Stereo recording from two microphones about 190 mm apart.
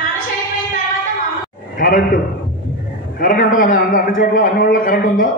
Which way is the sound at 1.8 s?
50° left (ahead or behind).